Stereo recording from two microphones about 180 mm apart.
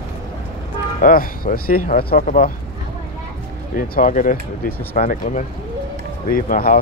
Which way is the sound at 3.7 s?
45° left (ahead or behind).